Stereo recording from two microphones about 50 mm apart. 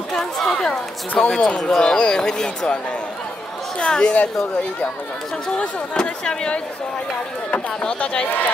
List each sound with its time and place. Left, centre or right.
0.1 s speech: centre
3.8 s a woman's voice: centre
5.6 s speech: centre
8.0 s a woman's voice: left